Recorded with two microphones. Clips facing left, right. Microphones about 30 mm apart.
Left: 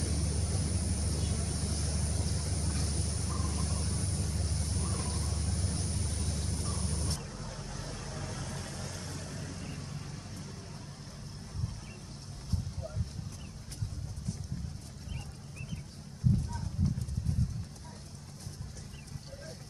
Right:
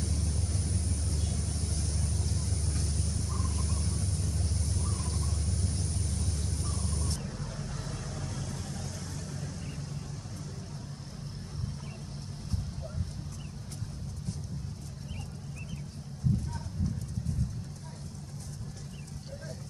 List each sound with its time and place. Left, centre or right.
0.0 s vehicle: centre
7.2 s vehicle: centre